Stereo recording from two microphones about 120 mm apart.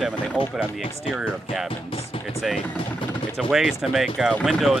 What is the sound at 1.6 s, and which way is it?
Speech, 50° left (ahead or behind).